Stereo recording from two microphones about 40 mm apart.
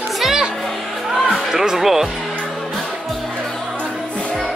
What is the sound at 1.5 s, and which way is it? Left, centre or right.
Music, centre.